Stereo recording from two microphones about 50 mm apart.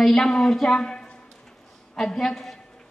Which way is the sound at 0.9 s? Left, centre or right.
Centre.